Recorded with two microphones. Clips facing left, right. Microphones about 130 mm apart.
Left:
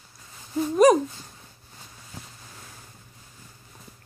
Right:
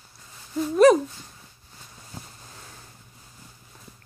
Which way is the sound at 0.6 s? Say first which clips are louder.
Right 1 dB; 10° left (ahead or behind).